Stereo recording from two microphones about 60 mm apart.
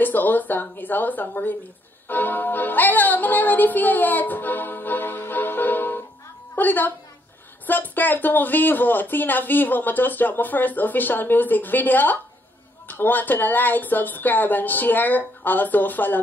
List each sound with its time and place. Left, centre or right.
0.0 s a woman's voice: left